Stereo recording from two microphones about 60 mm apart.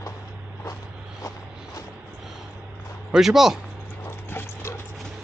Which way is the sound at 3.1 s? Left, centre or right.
Centre.